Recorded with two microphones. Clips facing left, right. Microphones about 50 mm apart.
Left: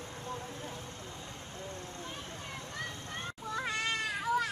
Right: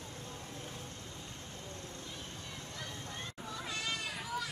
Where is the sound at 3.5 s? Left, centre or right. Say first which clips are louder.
Left 6 dB; left.